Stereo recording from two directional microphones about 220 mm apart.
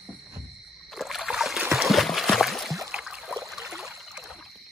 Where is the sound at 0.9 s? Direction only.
Centre (ahead or behind).